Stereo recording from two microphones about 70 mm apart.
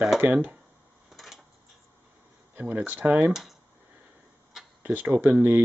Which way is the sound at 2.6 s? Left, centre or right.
Right.